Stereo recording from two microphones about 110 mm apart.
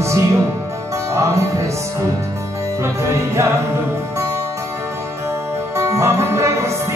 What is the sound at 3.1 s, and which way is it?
Music, 25° right (ahead or behind).